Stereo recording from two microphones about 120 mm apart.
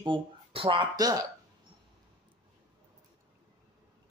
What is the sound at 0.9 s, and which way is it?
Speech, 30° right (ahead or behind).